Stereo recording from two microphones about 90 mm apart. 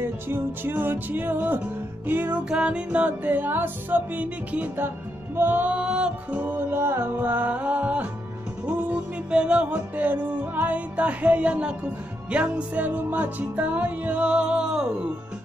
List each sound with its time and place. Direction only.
0.3 s music: 25° right (ahead or behind)
6.4 s music: 25° right (ahead or behind)
9.3 s music: 10° right (ahead or behind)